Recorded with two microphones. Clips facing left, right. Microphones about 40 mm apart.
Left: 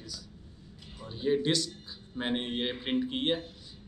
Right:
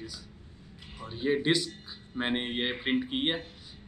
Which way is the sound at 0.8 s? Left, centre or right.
Right.